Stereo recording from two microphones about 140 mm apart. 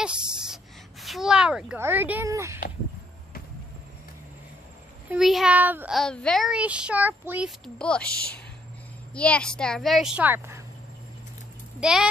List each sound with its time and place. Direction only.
0.0 s gasp: 5° right (ahead or behind)
1.0 s a child's voice: centre (ahead or behind); by 2.6 s 20° right (ahead or behind)
5.1 s a child's voice: 5° right (ahead or behind)
5.9 s a child's voice: 5° left (ahead or behind); by 7.4 s 15° right (ahead or behind)
7.4 s speech: 5° left (ahead or behind)
9.1 s speech: 10° left (ahead or behind); by 10.6 s 15° right (ahead or behind)
11.8 s speech: 5° right (ahead or behind)